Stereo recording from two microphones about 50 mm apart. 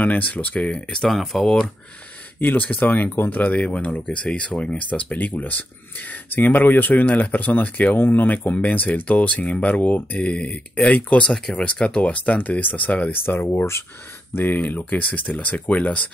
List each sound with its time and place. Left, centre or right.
0.0 s speech: left
0.6 s speech: centre
2.4 s speech: left
13.1 s speech: left